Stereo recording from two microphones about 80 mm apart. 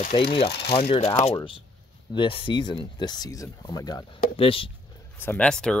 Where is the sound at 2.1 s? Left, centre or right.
Left.